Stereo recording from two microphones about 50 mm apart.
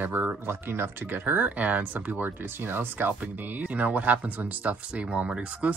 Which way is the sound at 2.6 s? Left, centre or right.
Right.